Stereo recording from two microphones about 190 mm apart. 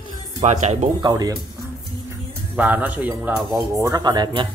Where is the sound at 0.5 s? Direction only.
40° right (ahead or behind).